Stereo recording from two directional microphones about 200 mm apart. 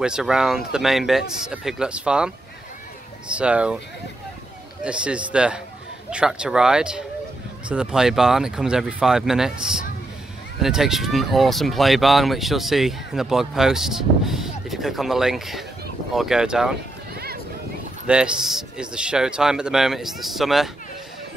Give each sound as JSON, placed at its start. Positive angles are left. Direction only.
{"t": 0.0, "sound": "speech", "side_deg": -5}
{"t": 4.8, "sound": "speech", "side_deg": -5}
{"t": 10.6, "sound": "speech", "side_deg": 0}
{"t": 17.1, "sound": "a sound", "side_deg": -50}
{"t": 18.0, "sound": "speech", "side_deg": -5}